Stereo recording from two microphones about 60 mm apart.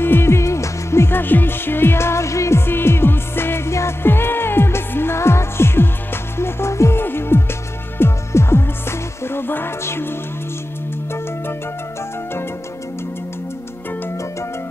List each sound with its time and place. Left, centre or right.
0.0 s music: left
2.6 s music: left
7.0 s music: left